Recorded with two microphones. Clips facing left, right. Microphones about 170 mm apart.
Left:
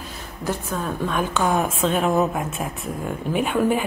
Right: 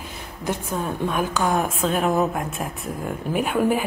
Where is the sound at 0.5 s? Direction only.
15° right (ahead or behind).